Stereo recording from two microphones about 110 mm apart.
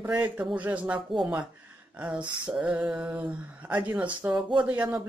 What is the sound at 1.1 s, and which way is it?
A man's voice, centre (ahead or behind).